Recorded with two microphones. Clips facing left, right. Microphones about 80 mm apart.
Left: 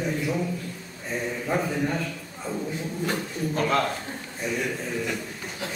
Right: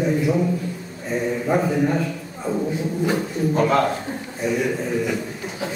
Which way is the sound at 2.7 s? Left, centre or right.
Centre.